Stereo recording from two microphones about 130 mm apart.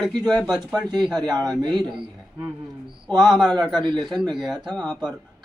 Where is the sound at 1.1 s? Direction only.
30° right (ahead or behind).